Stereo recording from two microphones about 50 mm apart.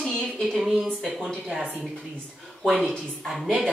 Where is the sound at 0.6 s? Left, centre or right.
Centre.